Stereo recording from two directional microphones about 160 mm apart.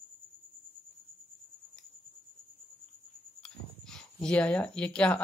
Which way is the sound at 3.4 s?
5° left (ahead or behind).